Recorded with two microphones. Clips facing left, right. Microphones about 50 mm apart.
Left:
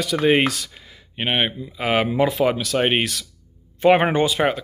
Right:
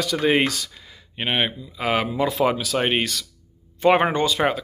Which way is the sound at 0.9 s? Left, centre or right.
Centre.